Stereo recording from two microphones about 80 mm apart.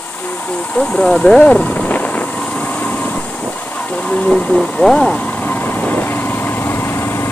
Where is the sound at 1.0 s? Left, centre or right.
Centre.